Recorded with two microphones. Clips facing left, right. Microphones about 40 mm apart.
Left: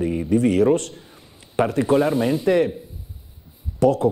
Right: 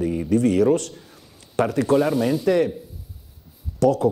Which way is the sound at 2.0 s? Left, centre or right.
Centre.